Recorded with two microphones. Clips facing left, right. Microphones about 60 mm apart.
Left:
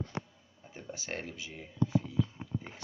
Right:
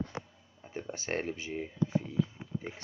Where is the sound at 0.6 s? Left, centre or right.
Right.